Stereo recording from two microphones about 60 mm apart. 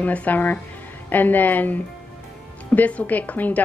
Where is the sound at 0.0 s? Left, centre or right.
Left.